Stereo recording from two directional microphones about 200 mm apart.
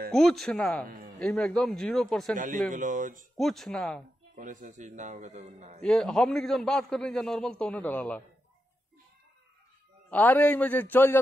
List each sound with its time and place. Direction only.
0.1 s a man's voice: centre (ahead or behind)
0.8 s speech: 45° right (ahead or behind)
1.2 s a man's voice: 5° left (ahead or behind)
2.3 s a man's voice: 40° right (ahead or behind)
3.3 s a man's voice: centre (ahead or behind)
4.4 s a man's voice: 40° right (ahead or behind)
5.8 s a man's voice: 5° left (ahead or behind)
10.0 s a man's voice: 10° left (ahead or behind)